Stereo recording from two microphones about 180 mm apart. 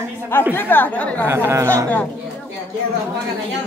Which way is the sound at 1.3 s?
15° right (ahead or behind).